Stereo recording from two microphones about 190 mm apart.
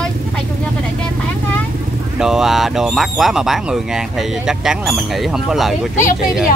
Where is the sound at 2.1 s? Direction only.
5° right (ahead or behind).